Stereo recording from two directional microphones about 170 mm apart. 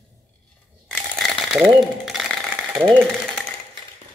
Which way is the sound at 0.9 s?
Centre (ahead or behind).